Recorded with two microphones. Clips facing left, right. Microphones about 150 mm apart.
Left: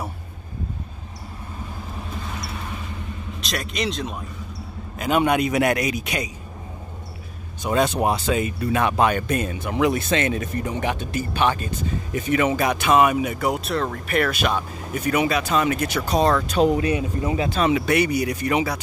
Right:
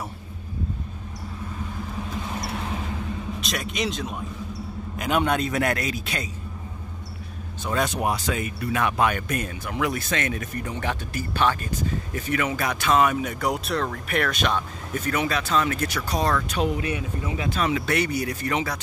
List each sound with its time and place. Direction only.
3.3 s a man's voice: centre (ahead or behind)
5.2 s a man's voice: 10° left (ahead or behind)
7.6 s speech: 25° left (ahead or behind)
16.0 s speech: 25° left (ahead or behind)
17.7 s a man's voice: 10° left (ahead or behind)